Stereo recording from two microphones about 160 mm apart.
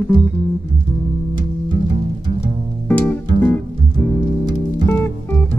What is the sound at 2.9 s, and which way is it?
Music, 10° left (ahead or behind).